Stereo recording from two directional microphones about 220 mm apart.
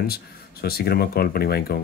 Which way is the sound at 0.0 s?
45° left (ahead or behind).